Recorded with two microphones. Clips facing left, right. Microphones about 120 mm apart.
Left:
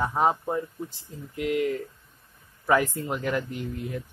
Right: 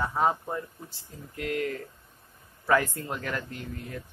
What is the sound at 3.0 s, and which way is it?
Speech, 15° left (ahead or behind).